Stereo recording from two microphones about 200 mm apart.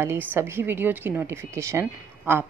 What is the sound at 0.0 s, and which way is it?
Speech, 10° right (ahead or behind).